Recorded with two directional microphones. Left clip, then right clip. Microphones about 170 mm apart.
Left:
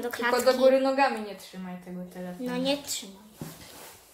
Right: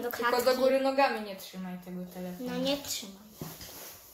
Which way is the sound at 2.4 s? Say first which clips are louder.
Left 3 dB; 5° left (ahead or behind).